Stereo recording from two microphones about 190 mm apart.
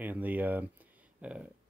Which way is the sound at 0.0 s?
10° right (ahead or behind).